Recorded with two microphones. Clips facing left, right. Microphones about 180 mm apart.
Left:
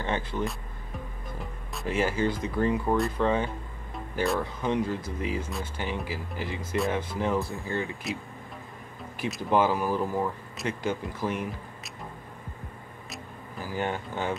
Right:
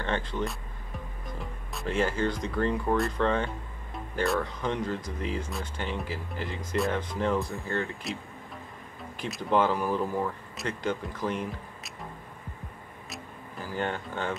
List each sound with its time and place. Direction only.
0.0 s speech: 10° left (ahead or behind)
9.2 s speech: 5° left (ahead or behind)
13.1 s music: 5° left (ahead or behind)